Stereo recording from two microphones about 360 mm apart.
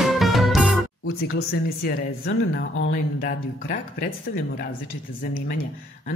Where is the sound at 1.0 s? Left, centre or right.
Left.